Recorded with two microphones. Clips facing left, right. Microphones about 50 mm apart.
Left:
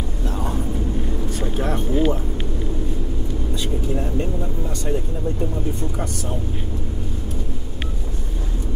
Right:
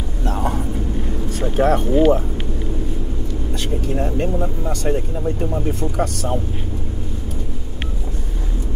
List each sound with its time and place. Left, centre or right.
1.6 s speech: right
3.5 s speech: right
3.9 s speech: right
5.7 s speech: right